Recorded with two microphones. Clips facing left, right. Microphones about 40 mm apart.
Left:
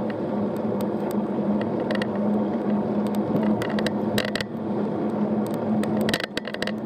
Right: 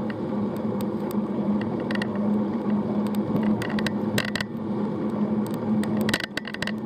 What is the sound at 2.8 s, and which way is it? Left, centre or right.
Vehicle, left.